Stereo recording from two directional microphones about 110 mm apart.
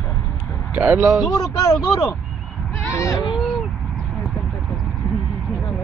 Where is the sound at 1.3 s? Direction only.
35° left (ahead or behind).